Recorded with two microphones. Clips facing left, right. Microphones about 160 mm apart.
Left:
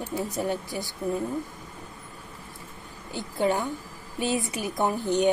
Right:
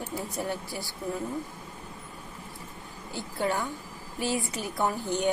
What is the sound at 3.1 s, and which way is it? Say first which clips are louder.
Speech: left 4 dB; 15° left (ahead or behind).